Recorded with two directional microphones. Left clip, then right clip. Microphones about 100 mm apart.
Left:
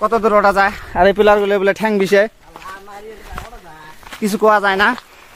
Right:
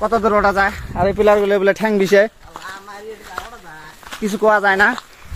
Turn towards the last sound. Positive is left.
turn(degrees=35)  # may be behind; listen again after turning